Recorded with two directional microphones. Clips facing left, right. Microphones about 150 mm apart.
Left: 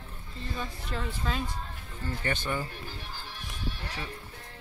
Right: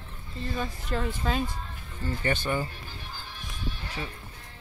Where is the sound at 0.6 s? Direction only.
55° right (ahead or behind).